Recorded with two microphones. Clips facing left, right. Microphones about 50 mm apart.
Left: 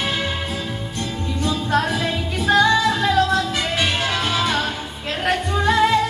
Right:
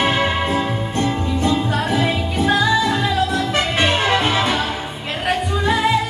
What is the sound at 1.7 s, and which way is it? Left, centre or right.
Music, centre.